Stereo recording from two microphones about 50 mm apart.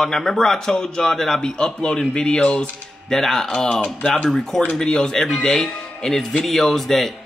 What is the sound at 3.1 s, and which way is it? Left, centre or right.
A man's voice, centre.